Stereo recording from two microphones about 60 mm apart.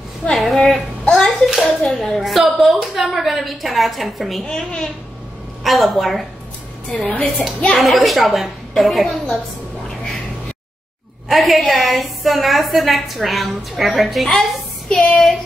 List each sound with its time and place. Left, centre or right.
0.3 s a sound: centre
1.1 s hands: centre
4.5 s a child's voice: centre
5.6 s a woman's voice: centre
6.9 s a woman's voice: left
7.7 s a woman's voice: centre
11.2 s a woman's voice: centre